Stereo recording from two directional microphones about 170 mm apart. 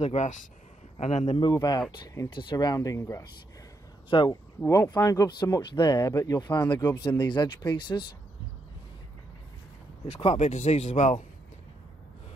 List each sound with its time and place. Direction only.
0.0 s a man's voice: 40° left (ahead or behind)
1.5 s speech: 25° left (ahead or behind)
4.6 s speech: 15° left (ahead or behind)
10.0 s speech: 40° left (ahead or behind)